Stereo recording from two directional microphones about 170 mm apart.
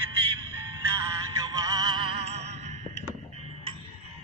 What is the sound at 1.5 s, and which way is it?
Music, 20° right (ahead or behind).